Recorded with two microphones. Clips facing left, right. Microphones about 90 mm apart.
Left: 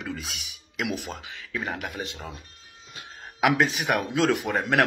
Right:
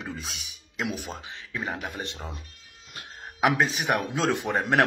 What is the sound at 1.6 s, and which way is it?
Speech, centre (ahead or behind).